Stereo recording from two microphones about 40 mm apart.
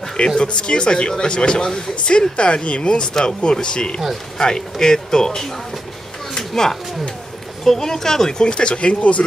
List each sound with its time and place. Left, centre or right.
0.4 s speech: left
6.3 s a sound: centre
7.6 s speech: centre; by 9.2 s left